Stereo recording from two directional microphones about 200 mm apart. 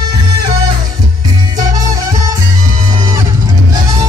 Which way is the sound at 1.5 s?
20° right (ahead or behind).